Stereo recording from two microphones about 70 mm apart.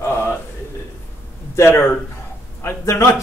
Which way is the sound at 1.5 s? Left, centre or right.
Left.